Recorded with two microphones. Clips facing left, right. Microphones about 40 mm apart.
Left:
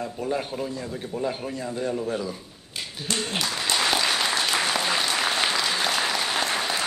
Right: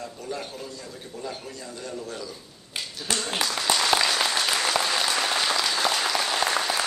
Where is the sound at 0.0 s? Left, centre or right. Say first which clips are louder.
Left 6 dB; left.